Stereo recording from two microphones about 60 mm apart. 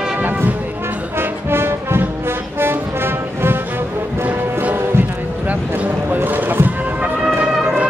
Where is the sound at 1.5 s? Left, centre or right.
Right.